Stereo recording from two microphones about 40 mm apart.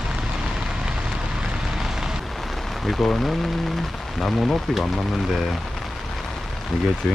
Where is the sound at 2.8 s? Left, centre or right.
Centre.